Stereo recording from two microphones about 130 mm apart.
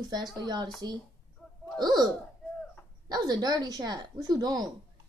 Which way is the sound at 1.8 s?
30° right (ahead or behind).